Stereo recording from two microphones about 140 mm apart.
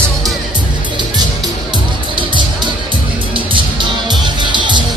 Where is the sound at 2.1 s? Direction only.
35° right (ahead or behind).